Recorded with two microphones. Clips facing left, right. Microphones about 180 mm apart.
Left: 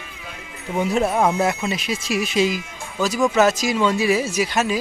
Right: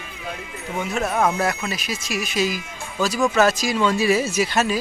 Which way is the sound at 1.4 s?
20° left (ahead or behind).